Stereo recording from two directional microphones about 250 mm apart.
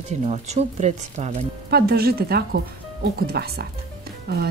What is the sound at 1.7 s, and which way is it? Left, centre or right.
A woman's voice, right.